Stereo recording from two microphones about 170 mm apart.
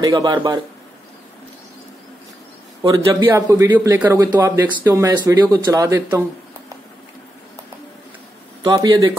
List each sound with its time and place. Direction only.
0.0 s speech: 20° right (ahead or behind)
2.9 s a man's voice: 20° right (ahead or behind)
8.6 s speech: 25° right (ahead or behind)